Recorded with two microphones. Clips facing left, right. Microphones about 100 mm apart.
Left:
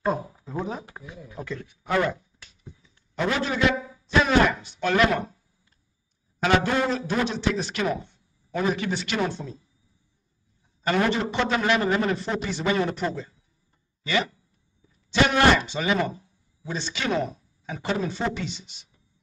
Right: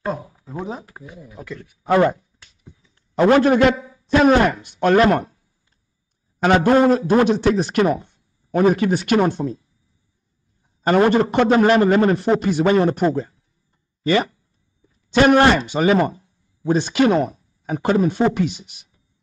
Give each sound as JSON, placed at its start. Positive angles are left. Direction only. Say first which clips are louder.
{"t": 0.0, "sound": "a sound", "louder": "even", "side_deg": 0}
{"t": 0.6, "sound": "speech", "louder": "right 2 dB", "side_deg": -15}
{"t": 1.3, "sound": "a man's voice", "louder": "left 1 dB", "side_deg": -5}
{"t": 1.9, "sound": "a man's voice", "louder": "right 8 dB", "side_deg": -40}
{"t": 3.2, "sound": "a man's voice", "louder": "right 11 dB", "side_deg": -55}
{"t": 4.9, "sound": "a man's voice", "louder": "right 6 dB", "side_deg": -40}
{"t": 6.4, "sound": "a man's voice", "louder": "right 8 dB", "side_deg": -45}
{"t": 10.8, "sound": "a man's voice", "louder": "right 8 dB", "side_deg": -40}
{"t": 11.5, "sound": "a man's voice", "louder": "right 9 dB", "side_deg": -40}
{"t": 12.4, "sound": "a man's voice", "louder": "right 8 dB", "side_deg": -50}